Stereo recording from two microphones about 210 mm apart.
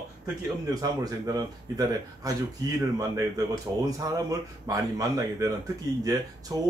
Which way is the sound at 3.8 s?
15° right (ahead or behind).